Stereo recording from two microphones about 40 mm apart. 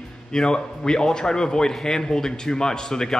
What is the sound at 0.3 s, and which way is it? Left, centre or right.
A man's voice, centre.